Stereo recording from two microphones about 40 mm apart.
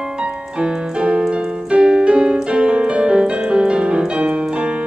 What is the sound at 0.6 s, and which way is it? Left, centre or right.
Music, right.